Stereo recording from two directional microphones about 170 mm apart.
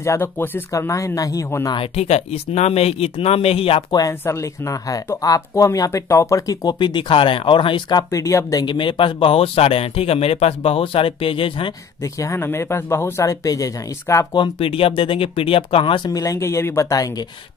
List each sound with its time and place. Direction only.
0.0 s speech: 15° left (ahead or behind)
1.8 s speech: 40° left (ahead or behind)
4.0 s speech: 20° left (ahead or behind)
12.0 s speech: 15° left (ahead or behind)
14.4 s speech: 35° left (ahead or behind)